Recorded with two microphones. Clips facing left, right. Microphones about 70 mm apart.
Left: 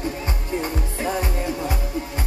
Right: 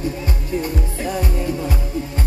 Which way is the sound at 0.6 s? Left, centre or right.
Left.